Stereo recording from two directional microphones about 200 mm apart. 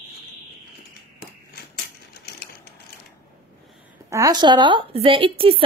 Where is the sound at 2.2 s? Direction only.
55° left (ahead or behind).